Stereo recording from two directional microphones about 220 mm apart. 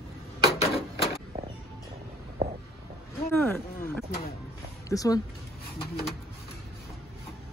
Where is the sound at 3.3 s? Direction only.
10° left (ahead or behind).